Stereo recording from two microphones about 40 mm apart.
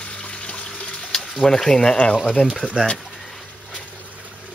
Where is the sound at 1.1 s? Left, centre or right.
Centre.